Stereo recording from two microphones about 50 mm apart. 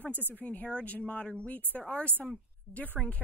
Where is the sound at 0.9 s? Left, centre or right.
Left.